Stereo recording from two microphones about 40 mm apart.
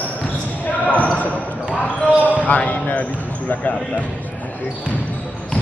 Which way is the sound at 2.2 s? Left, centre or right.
Left.